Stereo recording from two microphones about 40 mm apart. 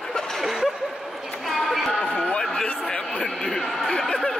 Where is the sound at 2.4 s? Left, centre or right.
Centre.